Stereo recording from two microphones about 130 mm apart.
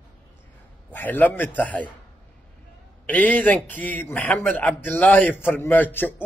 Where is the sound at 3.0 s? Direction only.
10° left (ahead or behind).